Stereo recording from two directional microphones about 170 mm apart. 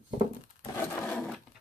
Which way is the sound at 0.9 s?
10° left (ahead or behind).